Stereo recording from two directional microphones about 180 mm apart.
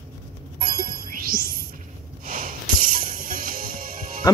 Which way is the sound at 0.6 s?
50° right (ahead or behind).